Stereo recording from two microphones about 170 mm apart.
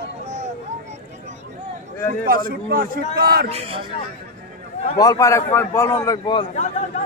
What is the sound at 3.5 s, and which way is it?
Speech, 35° right (ahead or behind).